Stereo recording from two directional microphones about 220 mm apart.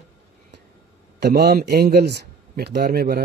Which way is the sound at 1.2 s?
45° right (ahead or behind).